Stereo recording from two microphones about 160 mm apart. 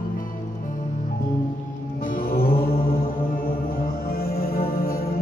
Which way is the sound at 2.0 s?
65° left (ahead or behind).